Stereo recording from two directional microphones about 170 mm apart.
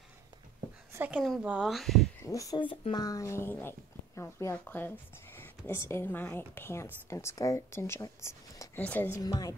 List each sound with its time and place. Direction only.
0.9 s speech: 10° right (ahead or behind)
2.2 s speech: 20° left (ahead or behind)
9.2 s a woman's voice: 20° left (ahead or behind)